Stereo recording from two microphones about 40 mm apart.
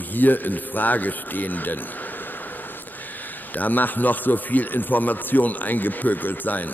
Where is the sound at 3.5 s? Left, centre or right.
Left.